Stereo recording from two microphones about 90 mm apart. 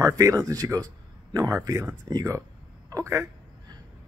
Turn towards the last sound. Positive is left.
turn(degrees=-35)  # may be behind; listen again after turning